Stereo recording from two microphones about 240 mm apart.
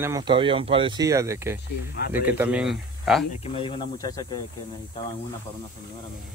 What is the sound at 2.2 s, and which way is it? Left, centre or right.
Speech, centre.